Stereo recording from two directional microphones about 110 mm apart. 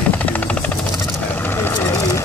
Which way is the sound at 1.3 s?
20° left (ahead or behind).